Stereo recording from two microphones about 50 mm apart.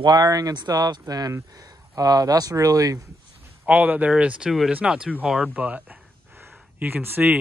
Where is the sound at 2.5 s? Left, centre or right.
Right.